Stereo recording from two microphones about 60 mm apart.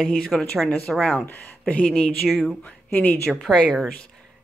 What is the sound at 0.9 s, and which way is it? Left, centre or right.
Speech, centre.